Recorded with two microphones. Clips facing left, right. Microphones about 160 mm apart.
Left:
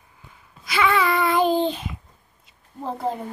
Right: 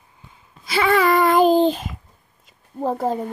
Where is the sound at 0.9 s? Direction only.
45° right (ahead or behind).